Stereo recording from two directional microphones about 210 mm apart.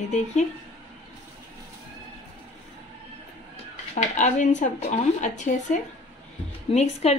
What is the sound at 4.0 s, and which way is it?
Speech, 35° left (ahead or behind).